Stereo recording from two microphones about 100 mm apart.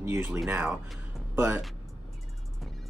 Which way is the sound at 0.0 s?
25° right (ahead or behind).